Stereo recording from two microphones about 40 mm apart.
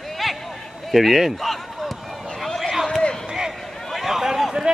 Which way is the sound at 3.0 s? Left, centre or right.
Centre.